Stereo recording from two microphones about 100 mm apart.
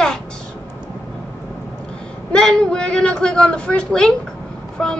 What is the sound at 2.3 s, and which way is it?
A woman's voice, 10° left (ahead or behind).